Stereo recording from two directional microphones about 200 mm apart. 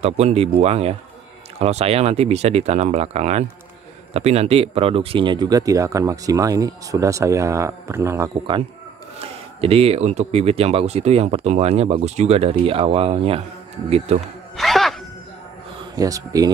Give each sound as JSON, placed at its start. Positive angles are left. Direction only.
{"t": 0.0, "sound": "speech", "side_deg": -30}
{"t": 14.6, "sound": "a sound", "side_deg": 0}
{"t": 16.0, "sound": "speech", "side_deg": -20}